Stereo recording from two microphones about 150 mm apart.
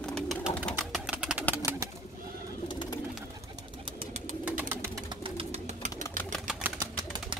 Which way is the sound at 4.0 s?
50° right (ahead or behind).